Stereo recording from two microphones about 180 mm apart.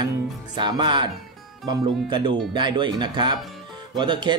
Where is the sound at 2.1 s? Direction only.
25° right (ahead or behind).